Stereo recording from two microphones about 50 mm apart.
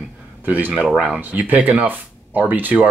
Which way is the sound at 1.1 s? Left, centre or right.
Right.